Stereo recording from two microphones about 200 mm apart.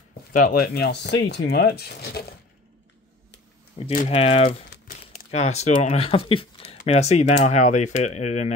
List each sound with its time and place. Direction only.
0.3 s speech: 45° left (ahead or behind)
3.8 s speech: 30° left (ahead or behind)